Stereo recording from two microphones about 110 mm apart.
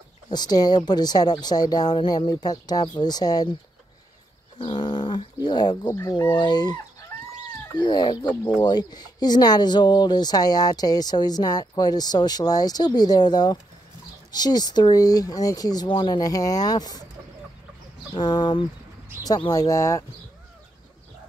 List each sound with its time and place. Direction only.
0.3 s speech: 40° left (ahead or behind)
4.6 s speech: 50° left (ahead or behind)
16.2 s speech: 35° left (ahead or behind)
18.1 s speech: 40° left (ahead or behind)
19.2 s speech: 35° left (ahead or behind)